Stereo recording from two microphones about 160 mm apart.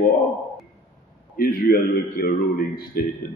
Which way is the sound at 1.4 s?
65° left (ahead or behind).